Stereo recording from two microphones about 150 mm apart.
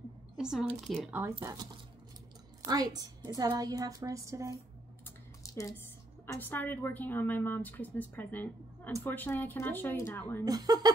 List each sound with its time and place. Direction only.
0.4 s speech: 5° right (ahead or behind)
1.4 s a woman's voice: 25° right (ahead or behind)
5.4 s a sound: 20° left (ahead or behind)
6.2 s a woman's voice: 15° left (ahead or behind)
10.4 s a woman's voice: 25° right (ahead or behind)